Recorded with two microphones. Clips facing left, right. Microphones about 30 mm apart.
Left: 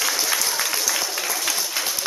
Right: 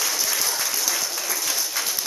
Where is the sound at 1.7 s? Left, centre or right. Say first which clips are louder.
Left 1 dB; centre.